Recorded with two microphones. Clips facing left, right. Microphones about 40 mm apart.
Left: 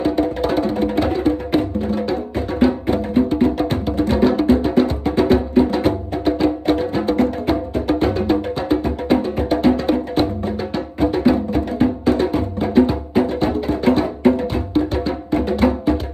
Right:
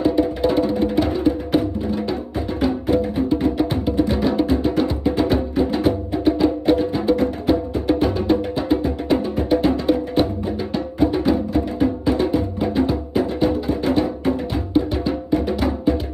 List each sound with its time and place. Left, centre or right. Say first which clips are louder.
0.0 s music: even; left